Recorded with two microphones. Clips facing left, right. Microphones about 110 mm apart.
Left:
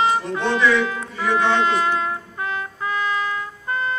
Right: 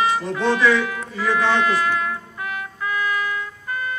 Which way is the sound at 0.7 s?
30° left (ahead or behind).